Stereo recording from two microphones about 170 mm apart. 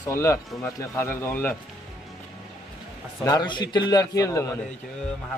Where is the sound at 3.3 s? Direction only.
25° left (ahead or behind).